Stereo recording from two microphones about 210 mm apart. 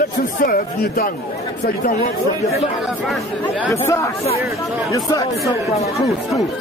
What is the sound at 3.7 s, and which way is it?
A man's voice, 15° left (ahead or behind).